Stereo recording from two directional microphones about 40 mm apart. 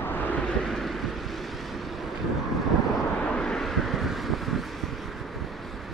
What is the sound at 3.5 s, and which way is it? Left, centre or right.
Vehicle, centre.